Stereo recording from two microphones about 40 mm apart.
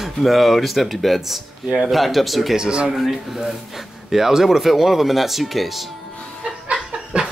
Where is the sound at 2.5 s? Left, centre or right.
Right.